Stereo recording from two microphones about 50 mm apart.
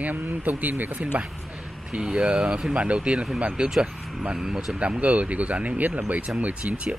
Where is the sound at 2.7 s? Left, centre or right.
Right.